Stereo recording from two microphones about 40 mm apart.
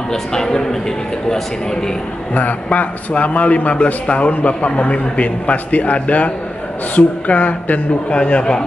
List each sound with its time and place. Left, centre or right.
0.1 s a man's voice: centre
2.3 s a man's voice: left